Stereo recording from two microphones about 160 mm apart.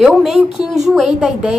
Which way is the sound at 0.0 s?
Centre (ahead or behind).